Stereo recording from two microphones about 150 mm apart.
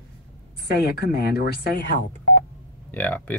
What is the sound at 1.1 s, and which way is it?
Speech, 90° left.